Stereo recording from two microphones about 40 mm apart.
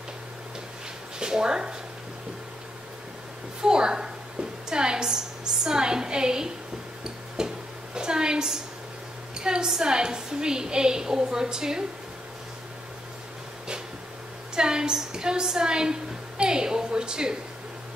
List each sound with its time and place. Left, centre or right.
1.2 s speech: centre
3.6 s a woman's voice: centre
7.3 s a sound: centre
9.7 s a woman's voice: centre
14.5 s a woman's voice: centre